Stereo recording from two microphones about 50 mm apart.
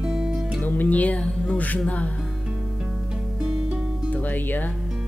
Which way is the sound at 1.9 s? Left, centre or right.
Left.